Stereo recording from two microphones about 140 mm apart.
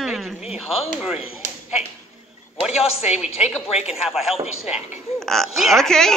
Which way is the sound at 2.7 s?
50° left (ahead or behind).